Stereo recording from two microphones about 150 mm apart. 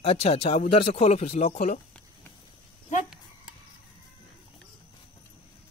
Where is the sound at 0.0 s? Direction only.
40° left (ahead or behind).